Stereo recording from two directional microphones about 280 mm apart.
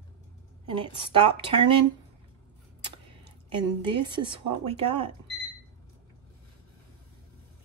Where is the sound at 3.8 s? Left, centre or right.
Centre.